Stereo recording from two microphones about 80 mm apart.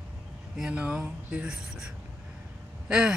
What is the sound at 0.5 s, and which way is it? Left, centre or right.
A woman's voice, centre.